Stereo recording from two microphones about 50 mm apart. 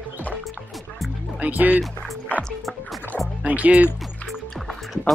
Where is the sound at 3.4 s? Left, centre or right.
Right.